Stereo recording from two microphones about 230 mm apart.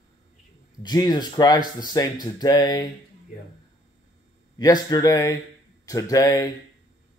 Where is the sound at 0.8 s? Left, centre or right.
Centre.